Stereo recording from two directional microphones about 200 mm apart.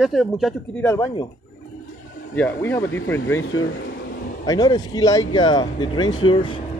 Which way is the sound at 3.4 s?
70° left (ahead or behind).